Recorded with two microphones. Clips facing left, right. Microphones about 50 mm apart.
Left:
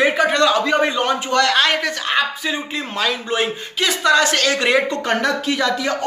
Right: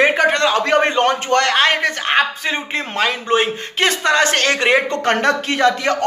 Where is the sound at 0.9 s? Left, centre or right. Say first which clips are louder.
Right 3 dB; right.